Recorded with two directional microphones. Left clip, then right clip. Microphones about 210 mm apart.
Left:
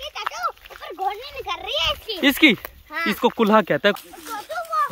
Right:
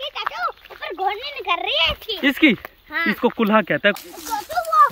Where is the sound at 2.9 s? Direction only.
5° left (ahead or behind).